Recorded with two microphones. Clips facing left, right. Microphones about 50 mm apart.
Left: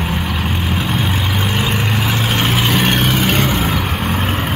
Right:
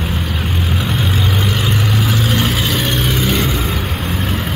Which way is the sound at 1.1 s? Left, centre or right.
Left.